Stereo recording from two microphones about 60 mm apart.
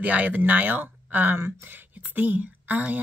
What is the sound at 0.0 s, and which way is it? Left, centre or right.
A woman's voice, right.